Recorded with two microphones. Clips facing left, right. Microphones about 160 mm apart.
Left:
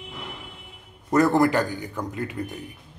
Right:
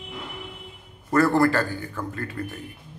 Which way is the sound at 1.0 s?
20° left (ahead or behind).